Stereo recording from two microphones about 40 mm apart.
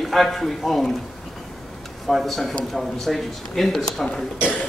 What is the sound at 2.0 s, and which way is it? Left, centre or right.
A man's voice, centre.